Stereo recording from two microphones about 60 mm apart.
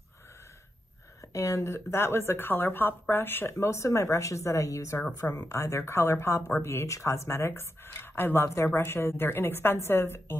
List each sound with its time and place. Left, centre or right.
1.3 s speech: left
5.4 s speech: left